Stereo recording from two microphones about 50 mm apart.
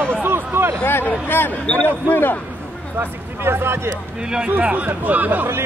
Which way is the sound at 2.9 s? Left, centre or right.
Right.